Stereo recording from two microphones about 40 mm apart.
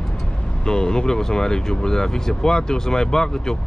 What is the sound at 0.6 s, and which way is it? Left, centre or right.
Speech, centre.